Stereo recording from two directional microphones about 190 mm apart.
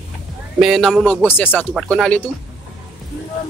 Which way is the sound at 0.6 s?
Centre (ahead or behind).